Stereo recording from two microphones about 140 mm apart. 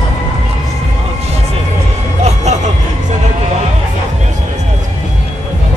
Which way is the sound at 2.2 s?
55° right (ahead or behind).